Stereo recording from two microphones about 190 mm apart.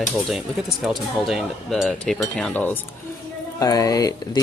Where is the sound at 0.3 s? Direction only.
Centre (ahead or behind).